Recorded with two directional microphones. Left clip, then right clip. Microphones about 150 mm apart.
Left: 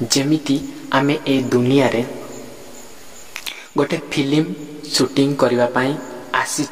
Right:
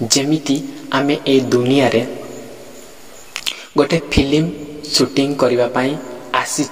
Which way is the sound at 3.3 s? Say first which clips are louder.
Right 5 dB; 25° right (ahead or behind).